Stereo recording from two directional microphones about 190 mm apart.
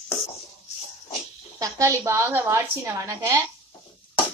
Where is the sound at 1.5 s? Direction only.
15° right (ahead or behind).